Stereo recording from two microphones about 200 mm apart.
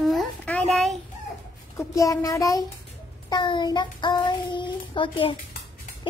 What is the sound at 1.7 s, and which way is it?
Speech, 15° left (ahead or behind).